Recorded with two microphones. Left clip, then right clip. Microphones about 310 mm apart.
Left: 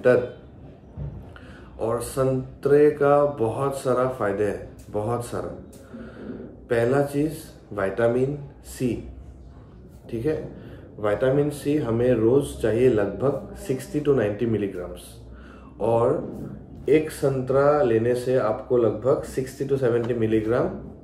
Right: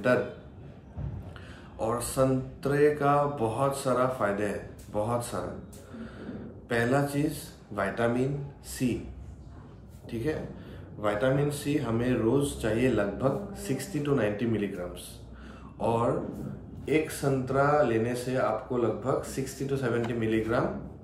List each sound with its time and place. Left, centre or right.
1.8 s speech: centre
6.7 s speech: centre
10.0 s speech: centre
15.8 s speech: centre